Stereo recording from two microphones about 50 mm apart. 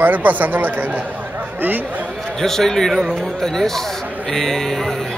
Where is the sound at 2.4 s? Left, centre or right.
Centre.